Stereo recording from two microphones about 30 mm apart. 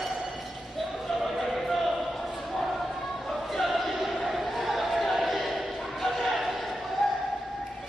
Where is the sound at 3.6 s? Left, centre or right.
Centre.